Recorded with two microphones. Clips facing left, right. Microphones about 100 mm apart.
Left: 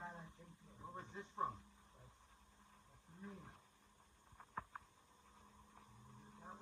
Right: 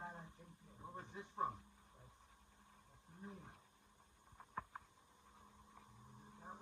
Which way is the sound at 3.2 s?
20° right (ahead or behind).